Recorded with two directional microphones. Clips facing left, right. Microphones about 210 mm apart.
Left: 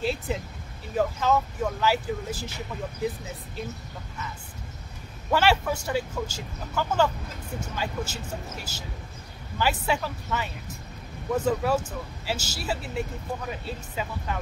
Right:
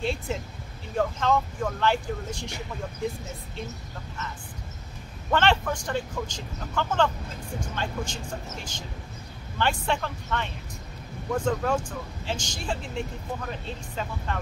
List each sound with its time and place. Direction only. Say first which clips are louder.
0.0 s speech: left 1 dB; 5° left (ahead or behind)
5.3 s speech: left 1 dB; 10° left (ahead or behind)